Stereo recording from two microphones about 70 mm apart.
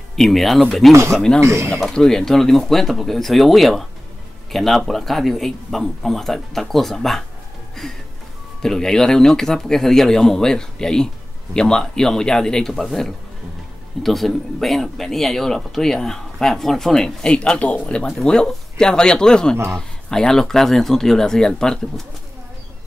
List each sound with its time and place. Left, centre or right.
0.1 s speech: centre
1.4 s speech: right
1.7 s speech: centre